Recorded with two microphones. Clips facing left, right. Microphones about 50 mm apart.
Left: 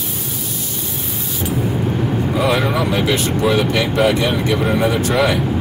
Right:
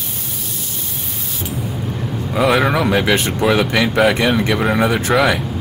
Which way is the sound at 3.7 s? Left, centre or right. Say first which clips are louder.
Right 1 dB; right.